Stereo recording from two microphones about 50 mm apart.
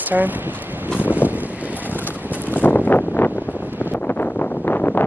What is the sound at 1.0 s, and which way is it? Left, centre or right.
Vehicle, right.